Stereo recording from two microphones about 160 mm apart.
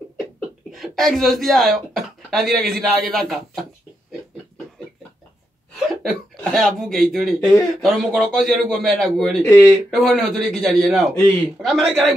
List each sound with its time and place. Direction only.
0.7 s speech: centre (ahead or behind)
6.0 s a man's voice: centre (ahead or behind)
7.3 s speech: 20° left (ahead or behind)
7.8 s a man's voice: centre (ahead or behind)
9.4 s speech: 15° left (ahead or behind)
9.8 s a man's voice: centre (ahead or behind)